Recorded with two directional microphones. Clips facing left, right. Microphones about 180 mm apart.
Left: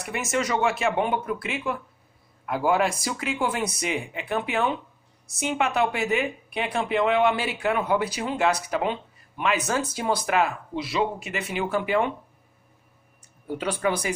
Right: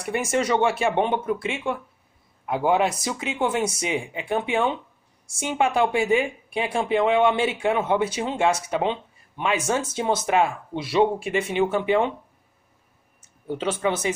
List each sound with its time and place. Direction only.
0.0 s a woman's voice: 30° right (ahead or behind)
13.6 s speech: 20° right (ahead or behind)